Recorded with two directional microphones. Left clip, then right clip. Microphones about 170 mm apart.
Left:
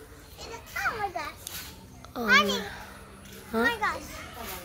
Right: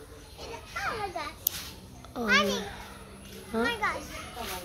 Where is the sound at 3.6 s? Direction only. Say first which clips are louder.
Left 2 dB; 45° left (ahead or behind).